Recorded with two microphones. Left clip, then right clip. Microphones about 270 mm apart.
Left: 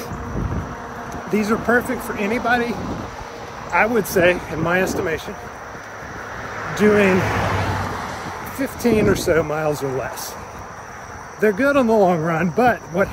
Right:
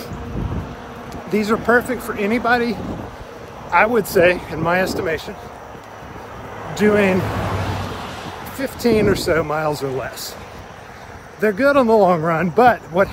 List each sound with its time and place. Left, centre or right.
1.3 s speech: centre
3.7 s speech: centre
6.7 s speech: centre
7.4 s a sound: left
8.5 s speech: centre
11.4 s speech: centre